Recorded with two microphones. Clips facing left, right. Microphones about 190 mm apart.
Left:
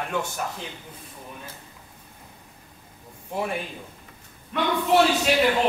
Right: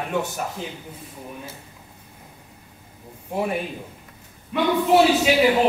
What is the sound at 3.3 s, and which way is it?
A man's voice, 5° right (ahead or behind).